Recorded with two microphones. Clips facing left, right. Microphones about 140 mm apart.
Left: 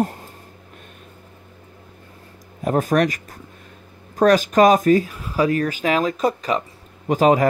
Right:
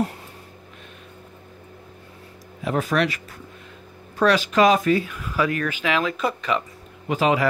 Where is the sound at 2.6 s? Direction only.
45° left (ahead or behind).